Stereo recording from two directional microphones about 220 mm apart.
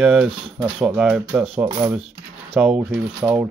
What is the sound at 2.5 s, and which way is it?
Speech, 5° right (ahead or behind).